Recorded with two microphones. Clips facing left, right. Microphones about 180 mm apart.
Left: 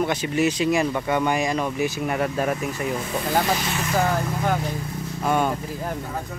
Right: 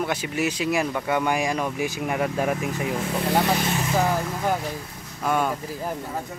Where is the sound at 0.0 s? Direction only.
5° right (ahead or behind).